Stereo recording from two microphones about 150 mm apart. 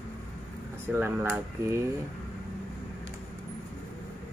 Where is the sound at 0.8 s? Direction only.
15° right (ahead or behind).